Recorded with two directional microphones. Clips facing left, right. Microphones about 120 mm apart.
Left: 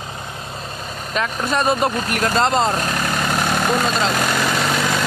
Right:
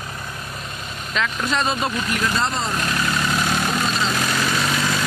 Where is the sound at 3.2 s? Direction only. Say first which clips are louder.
Left 2 dB; 45° left (ahead or behind).